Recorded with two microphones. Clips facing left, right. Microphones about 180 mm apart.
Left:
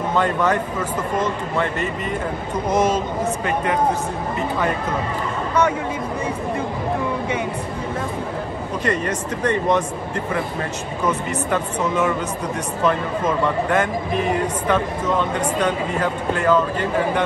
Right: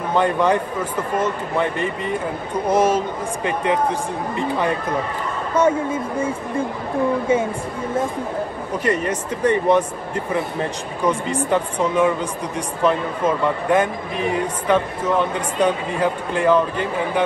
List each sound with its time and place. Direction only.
0.1 s speech: 15° right (ahead or behind)
2.7 s speech: 10° right (ahead or behind)
5.6 s speech: 25° right (ahead or behind)
8.8 s speech: 10° right (ahead or behind)
11.3 s speech: 10° right (ahead or behind)
15.6 s speech: 10° right (ahead or behind)